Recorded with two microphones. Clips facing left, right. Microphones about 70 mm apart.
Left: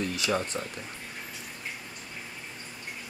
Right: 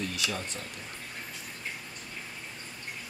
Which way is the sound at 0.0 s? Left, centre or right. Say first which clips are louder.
Left 5 dB; left.